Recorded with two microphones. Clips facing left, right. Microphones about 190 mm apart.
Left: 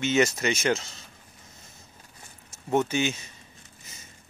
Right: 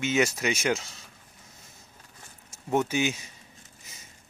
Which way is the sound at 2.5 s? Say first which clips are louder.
Left 1 dB; 10° right (ahead or behind).